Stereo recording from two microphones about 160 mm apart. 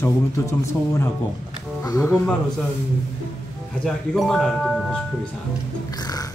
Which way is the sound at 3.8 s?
5° left (ahead or behind).